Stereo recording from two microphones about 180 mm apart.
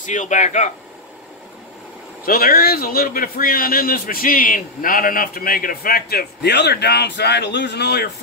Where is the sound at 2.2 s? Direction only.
55° left (ahead or behind).